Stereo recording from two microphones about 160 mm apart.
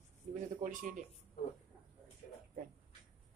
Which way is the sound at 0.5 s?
55° right (ahead or behind).